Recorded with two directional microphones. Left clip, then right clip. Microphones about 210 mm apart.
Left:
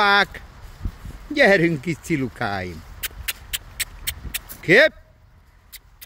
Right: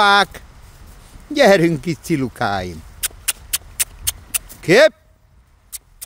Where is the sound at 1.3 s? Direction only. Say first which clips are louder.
Right 4 dB; 30° right (ahead or behind).